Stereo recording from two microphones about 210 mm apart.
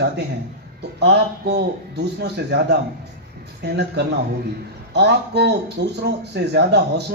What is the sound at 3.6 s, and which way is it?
A man's voice, 55° right (ahead or behind).